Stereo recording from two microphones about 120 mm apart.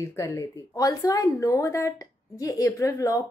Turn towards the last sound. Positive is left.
turn(degrees=25)  # may be behind; listen again after turning